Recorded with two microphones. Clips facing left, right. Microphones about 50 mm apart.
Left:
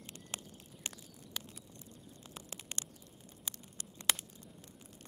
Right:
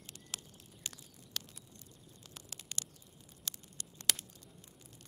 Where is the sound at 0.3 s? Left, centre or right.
Left.